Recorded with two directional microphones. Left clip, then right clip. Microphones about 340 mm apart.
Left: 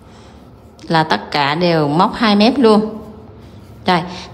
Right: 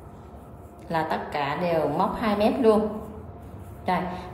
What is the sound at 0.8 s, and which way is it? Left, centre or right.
A woman's voice, centre.